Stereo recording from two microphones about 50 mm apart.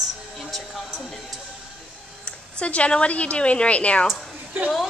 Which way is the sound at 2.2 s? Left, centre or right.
Left.